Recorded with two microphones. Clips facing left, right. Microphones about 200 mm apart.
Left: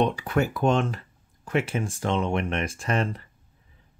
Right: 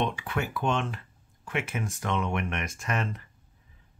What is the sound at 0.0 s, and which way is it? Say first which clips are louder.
Speech: left 6 dB; 40° left (ahead or behind).